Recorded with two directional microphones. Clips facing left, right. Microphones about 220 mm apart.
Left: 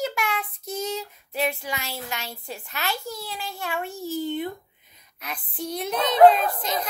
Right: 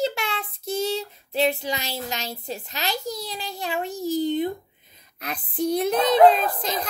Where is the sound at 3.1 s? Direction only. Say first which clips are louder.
Right 2 dB; 35° right (ahead or behind).